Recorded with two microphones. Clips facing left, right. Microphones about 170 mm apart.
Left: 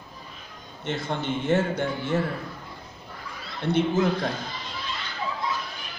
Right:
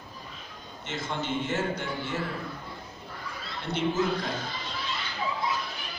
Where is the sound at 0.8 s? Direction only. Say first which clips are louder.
Left 4 dB; 55° left (ahead or behind).